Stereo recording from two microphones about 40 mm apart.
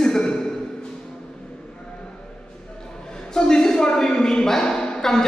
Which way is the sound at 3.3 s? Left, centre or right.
Centre.